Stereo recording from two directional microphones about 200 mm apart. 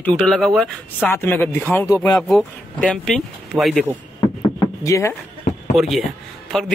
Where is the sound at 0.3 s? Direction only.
Centre (ahead or behind).